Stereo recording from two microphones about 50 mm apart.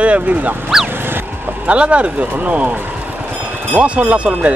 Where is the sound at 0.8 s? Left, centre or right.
Right.